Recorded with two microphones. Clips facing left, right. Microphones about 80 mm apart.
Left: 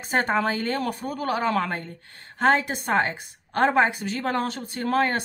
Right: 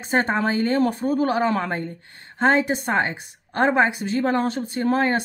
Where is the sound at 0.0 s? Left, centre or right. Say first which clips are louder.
Right 2 dB; right.